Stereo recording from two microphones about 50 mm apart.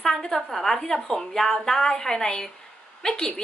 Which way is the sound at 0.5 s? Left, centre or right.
Centre.